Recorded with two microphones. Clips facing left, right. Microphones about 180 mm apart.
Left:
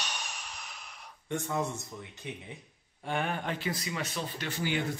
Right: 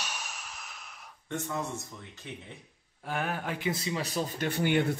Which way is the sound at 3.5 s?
25° right (ahead or behind).